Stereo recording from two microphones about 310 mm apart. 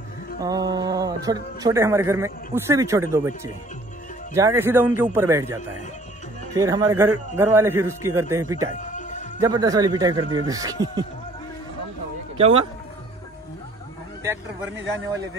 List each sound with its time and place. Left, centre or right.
0.4 s speech: centre
12.4 s speech: centre